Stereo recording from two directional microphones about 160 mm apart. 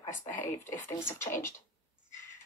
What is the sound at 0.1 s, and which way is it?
Speech, 15° left (ahead or behind).